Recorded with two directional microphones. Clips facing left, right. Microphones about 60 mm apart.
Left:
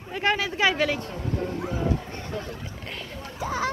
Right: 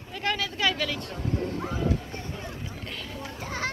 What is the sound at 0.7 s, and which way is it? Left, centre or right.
Speech, left.